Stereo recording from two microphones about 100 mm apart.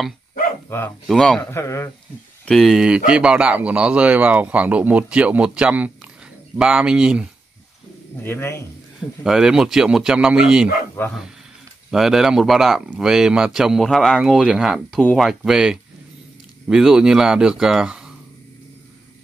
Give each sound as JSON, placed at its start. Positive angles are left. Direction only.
{"t": 0.7, "sound": "speech", "side_deg": 20}
{"t": 1.0, "sound": "speech", "side_deg": 5}
{"t": 1.5, "sound": "a man's voice", "side_deg": 30}
{"t": 2.4, "sound": "speech", "side_deg": 5}
{"t": 8.2, "sound": "a man's voice", "side_deg": 25}
{"t": 9.2, "sound": "speech", "side_deg": -5}
{"t": 11.0, "sound": "a man's voice", "side_deg": 20}
{"t": 11.9, "sound": "speech", "side_deg": -5}